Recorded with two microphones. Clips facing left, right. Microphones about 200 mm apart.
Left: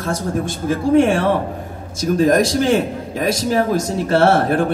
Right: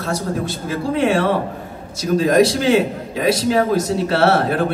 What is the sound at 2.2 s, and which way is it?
A man's voice, 50° left (ahead or behind).